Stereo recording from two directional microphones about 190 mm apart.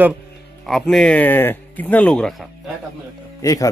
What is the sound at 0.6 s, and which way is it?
Speech, centre (ahead or behind).